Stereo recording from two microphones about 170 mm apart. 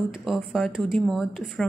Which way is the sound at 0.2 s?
Centre (ahead or behind).